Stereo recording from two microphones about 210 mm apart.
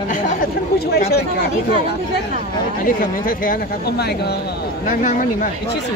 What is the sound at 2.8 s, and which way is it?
Speech, 40° left (ahead or behind).